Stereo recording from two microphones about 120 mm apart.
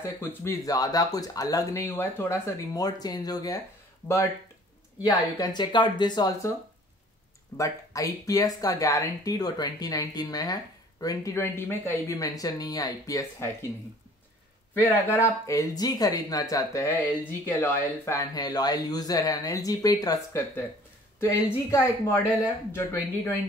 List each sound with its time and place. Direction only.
0.2 s speech: 20° left (ahead or behind)
5.0 s speech: 35° left (ahead or behind)
7.5 s speech: 25° left (ahead or behind)
14.7 s speech: 15° left (ahead or behind)
15.4 s speech: 30° left (ahead or behind)
18.3 s speech: 35° left (ahead or behind)
21.2 s speech: 25° left (ahead or behind)